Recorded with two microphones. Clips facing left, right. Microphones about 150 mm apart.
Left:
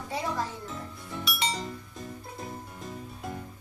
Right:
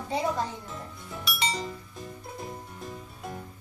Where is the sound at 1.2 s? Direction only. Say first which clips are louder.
Right 1 dB; centre (ahead or behind).